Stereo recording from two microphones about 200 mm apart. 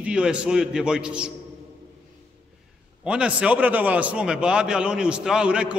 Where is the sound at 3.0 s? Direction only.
5° right (ahead or behind).